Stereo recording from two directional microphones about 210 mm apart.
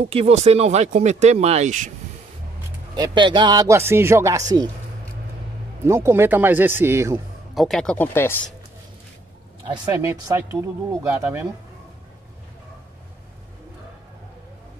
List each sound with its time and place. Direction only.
0.0 s speech: 30° right (ahead or behind)
3.0 s speech: 20° right (ahead or behind)
5.9 s speech: 10° right (ahead or behind)
7.5 s speech: centre (ahead or behind)
9.7 s speech: 15° right (ahead or behind)